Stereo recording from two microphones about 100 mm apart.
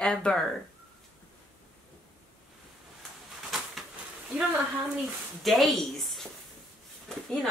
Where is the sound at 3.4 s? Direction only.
Centre (ahead or behind).